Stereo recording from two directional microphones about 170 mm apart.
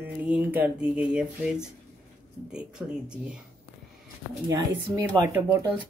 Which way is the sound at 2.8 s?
10° right (ahead or behind).